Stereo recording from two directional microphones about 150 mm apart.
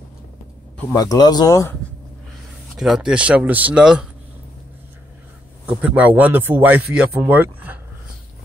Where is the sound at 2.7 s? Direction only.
Centre (ahead or behind).